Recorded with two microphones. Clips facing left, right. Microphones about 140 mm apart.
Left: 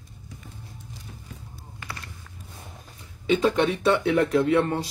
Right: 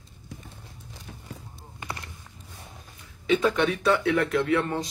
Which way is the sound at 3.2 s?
30° left (ahead or behind).